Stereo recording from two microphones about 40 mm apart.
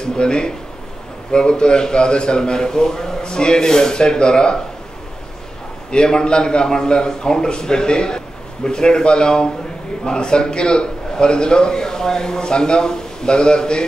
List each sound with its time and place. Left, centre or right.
0.0 s a man's voice: left
5.9 s a man's voice: left